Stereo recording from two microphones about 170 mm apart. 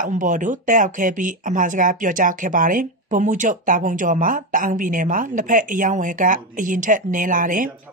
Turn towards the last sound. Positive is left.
turn(degrees=-55)  # may be behind; listen again after turning